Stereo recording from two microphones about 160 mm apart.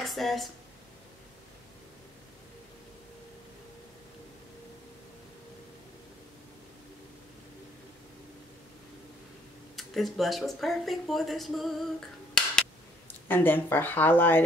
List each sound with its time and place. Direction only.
0.0 s speech: centre (ahead or behind)
9.8 s speech: centre (ahead or behind)
13.3 s speech: 15° left (ahead or behind)